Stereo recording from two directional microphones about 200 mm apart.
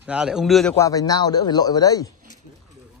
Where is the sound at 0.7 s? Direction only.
15° left (ahead or behind).